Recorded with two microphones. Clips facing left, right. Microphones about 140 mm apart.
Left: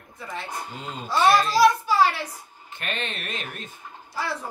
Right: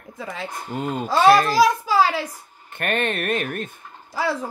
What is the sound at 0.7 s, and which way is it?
Speech, 55° right (ahead or behind).